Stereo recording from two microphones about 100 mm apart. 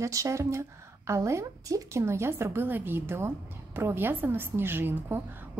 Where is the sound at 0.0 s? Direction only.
30° right (ahead or behind).